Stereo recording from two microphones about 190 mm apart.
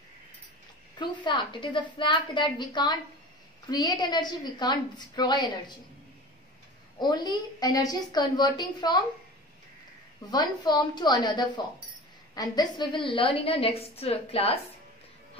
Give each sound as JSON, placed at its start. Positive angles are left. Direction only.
{"t": 0.9, "sound": "a woman's voice", "side_deg": 25}
{"t": 7.0, "sound": "a woman's voice", "side_deg": 20}
{"t": 10.3, "sound": "a woman's voice", "side_deg": 20}